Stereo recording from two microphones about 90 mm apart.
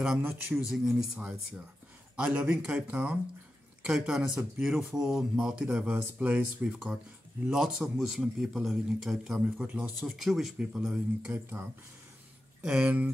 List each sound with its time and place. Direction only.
0.2 s a man's voice: 25° right (ahead or behind)
0.6 s a man's voice: 5° right (ahead or behind)
12.6 s speech: 15° right (ahead or behind)